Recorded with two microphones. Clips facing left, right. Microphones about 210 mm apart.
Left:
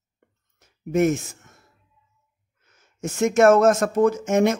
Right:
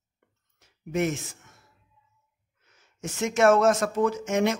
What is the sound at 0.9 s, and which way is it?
Speech, 45° left (ahead or behind).